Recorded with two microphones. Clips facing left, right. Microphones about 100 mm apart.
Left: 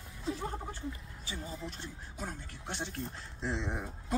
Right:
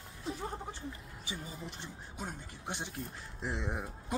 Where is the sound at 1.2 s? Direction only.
15° right (ahead or behind).